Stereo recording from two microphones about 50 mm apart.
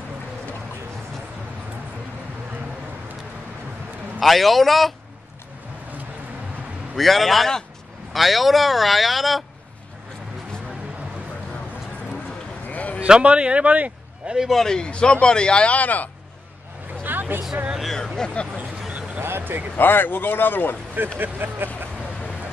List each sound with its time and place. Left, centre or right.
4.2 s speech: centre
7.0 s speech: centre
12.6 s a sound: left
13.0 s speech: right
14.2 s a man's voice: centre
14.5 s speech: centre
14.9 s speech: left
17.0 s a sound: right
17.9 s speech: centre
19.1 s vehicle: right
19.8 s speech: left
21.2 s speech: right